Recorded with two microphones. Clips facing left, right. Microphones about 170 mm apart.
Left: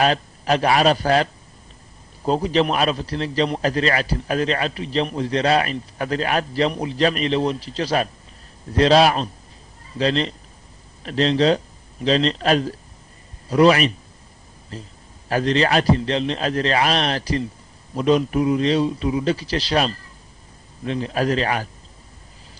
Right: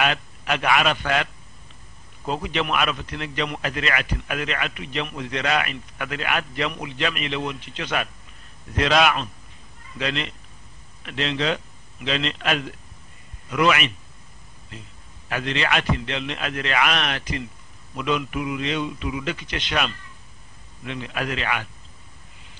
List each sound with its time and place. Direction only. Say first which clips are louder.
0.0 s a man's voice: left 5 dB; 35° left (ahead or behind)